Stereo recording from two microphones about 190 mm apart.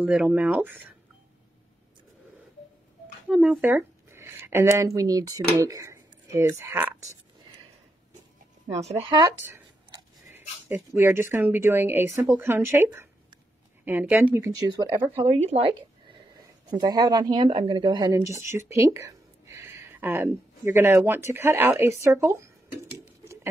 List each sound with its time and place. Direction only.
0.0 s speech: 5° right (ahead or behind)
3.3 s speech: 5° right (ahead or behind)
8.7 s speech: 35° right (ahead or behind)
9.1 s speech: 20° right (ahead or behind)
15.2 s speech: 35° right (ahead or behind); by 22.5 s 15° right (ahead or behind)
22.9 s a sound: 15° right (ahead or behind)